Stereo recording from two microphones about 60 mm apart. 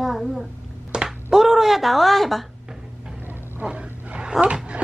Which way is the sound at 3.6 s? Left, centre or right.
Centre.